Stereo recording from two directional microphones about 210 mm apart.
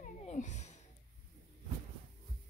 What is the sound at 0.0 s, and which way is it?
Cat, 35° left (ahead or behind).